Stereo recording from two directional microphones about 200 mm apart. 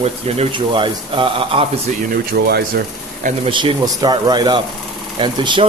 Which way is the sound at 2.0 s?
50° right (ahead or behind).